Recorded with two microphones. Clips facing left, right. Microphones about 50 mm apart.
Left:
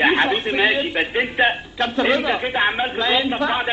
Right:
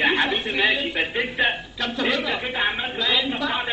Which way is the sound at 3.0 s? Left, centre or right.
Left.